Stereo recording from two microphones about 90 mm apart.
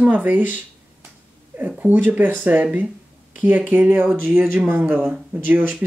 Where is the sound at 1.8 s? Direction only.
15° right (ahead or behind).